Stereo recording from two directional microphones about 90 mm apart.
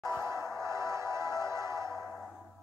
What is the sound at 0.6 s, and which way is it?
Music, 35° right (ahead or behind).